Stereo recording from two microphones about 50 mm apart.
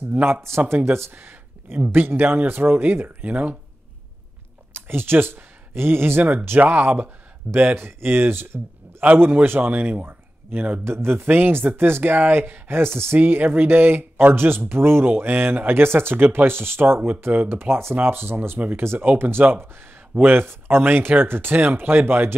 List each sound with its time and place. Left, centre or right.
0.1 s speech: right
1.1 s speech: right
3.3 s speech: right
4.7 s speech: right
10.8 s speech: right